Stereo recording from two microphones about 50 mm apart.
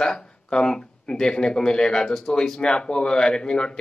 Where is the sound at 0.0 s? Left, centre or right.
Centre.